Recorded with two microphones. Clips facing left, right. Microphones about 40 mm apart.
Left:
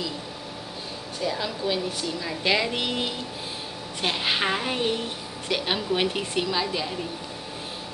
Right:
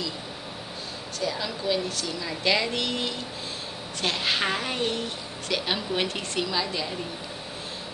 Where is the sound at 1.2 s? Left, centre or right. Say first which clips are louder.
Left 1 dB; centre.